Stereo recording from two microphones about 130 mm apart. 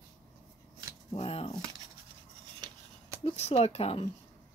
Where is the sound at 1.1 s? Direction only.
50° left (ahead or behind).